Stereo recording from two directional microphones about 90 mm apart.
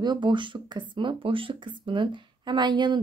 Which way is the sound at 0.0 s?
55° right (ahead or behind).